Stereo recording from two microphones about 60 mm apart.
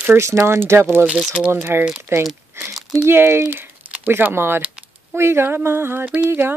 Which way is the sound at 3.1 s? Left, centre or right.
Right.